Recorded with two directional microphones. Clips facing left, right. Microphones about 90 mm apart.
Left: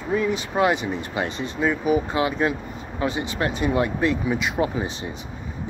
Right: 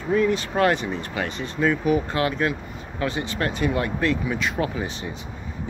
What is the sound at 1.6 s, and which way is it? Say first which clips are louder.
Speech: even; 10° left (ahead or behind).